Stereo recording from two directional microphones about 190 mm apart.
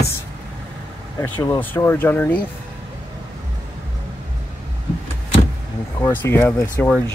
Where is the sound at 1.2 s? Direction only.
15° left (ahead or behind).